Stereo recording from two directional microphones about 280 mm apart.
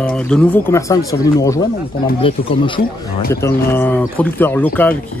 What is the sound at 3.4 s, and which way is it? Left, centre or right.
Speech, centre.